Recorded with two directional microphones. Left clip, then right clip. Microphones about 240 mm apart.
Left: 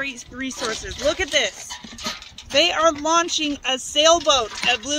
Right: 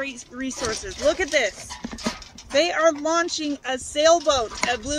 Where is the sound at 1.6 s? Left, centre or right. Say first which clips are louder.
Left 1 dB; right.